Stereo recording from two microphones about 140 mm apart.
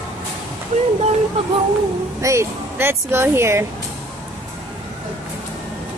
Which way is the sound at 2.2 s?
20° right (ahead or behind).